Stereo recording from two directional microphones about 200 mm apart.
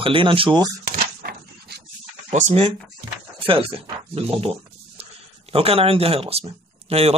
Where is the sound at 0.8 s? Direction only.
50° right (ahead or behind).